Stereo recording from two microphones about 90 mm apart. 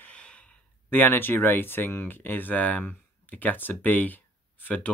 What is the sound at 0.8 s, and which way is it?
Speech, 20° left (ahead or behind).